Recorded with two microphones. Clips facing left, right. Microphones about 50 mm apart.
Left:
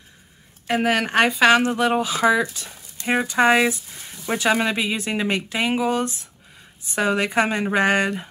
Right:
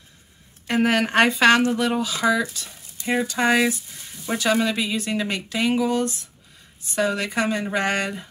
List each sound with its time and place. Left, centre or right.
0.7 s a woman's voice: centre
1.6 s speech: left